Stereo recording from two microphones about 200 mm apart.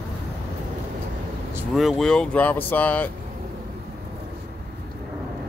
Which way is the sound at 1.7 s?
Centre (ahead or behind).